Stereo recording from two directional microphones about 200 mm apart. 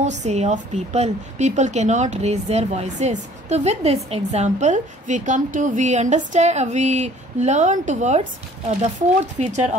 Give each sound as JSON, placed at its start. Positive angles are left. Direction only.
{"t": 0.2, "sound": "a woman's voice", "side_deg": -35}